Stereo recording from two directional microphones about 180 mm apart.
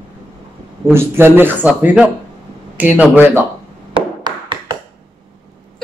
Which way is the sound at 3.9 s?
25° right (ahead or behind).